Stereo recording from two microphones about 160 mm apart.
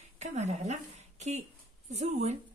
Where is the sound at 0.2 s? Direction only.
45° right (ahead or behind).